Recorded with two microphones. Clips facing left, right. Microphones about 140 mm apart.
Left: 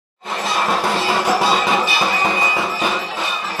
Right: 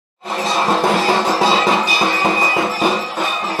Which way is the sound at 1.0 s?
30° right (ahead or behind).